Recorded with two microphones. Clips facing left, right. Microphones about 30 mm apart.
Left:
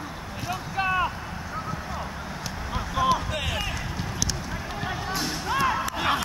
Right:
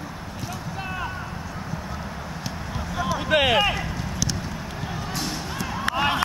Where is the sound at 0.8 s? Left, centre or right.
Left.